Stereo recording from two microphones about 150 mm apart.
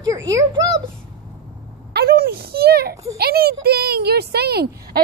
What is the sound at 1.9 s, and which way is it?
Speech, 90° right.